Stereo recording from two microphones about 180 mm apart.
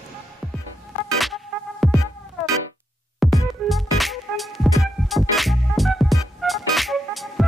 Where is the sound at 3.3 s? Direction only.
Centre (ahead or behind).